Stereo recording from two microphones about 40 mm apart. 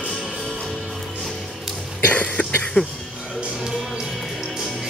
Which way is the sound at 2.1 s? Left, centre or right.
Left.